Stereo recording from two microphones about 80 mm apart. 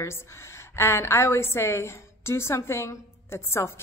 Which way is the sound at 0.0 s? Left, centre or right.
Left.